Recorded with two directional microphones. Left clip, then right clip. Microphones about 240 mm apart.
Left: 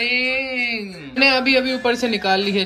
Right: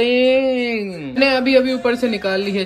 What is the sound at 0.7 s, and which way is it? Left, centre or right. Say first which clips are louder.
A man's voice: right 3 dB; centre.